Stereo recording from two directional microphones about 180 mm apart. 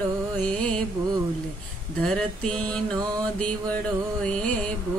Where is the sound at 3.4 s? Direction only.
5° left (ahead or behind).